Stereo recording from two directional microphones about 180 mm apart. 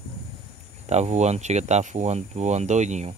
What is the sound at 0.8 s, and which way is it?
Speech, 40° right (ahead or behind).